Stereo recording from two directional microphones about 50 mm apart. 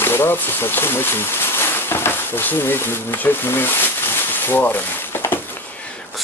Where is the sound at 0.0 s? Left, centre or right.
Left.